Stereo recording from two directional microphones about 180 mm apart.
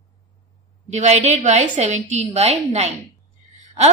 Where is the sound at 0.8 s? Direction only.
40° right (ahead or behind).